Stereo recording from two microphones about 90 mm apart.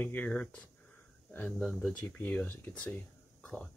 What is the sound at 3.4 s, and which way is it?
Whispering, 10° left (ahead or behind).